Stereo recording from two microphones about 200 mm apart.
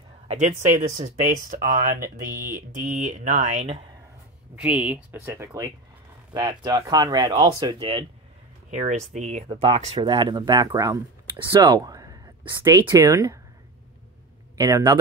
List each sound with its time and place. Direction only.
0.3 s speech: 35° right (ahead or behind)
4.6 s speech: 5° right (ahead or behind); by 8.0 s 25° right (ahead or behind)
8.6 s speech: 35° right (ahead or behind); by 13.4 s 15° right (ahead or behind)
14.6 s speech: 20° right (ahead or behind)